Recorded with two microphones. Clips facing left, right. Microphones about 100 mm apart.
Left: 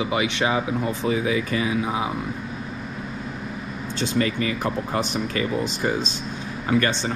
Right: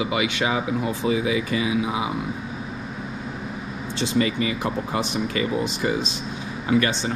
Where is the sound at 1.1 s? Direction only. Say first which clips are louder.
Right 1 dB; 45° left (ahead or behind).